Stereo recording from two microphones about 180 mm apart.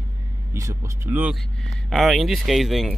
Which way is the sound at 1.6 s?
Centre (ahead or behind).